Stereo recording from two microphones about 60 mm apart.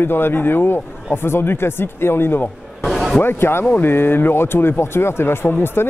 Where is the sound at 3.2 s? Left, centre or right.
Left.